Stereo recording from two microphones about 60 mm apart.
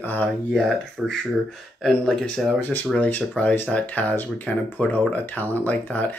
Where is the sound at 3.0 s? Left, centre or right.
Left.